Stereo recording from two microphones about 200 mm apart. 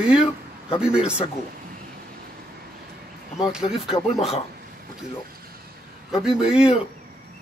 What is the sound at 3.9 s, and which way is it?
Speech, 30° left (ahead or behind).